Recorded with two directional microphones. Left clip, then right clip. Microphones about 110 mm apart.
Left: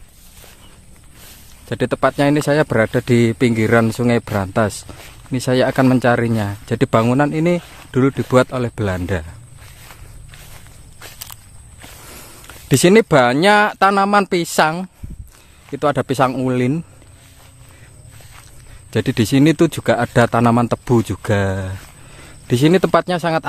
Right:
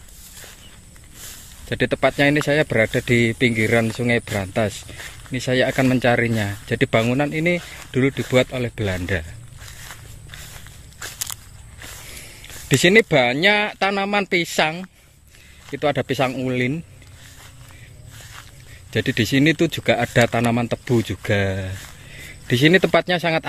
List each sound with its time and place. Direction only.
1.7 s speech: 40° left (ahead or behind)
11.0 s walk: 15° right (ahead or behind)
12.6 s speech: 55° left (ahead or behind)
15.7 s speech: 45° left (ahead or behind)
18.9 s speech: 50° left (ahead or behind)
20.5 s speech: 55° left (ahead or behind); by 23.4 s 35° left (ahead or behind)